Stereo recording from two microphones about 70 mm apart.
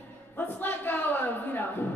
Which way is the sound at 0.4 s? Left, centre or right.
Left.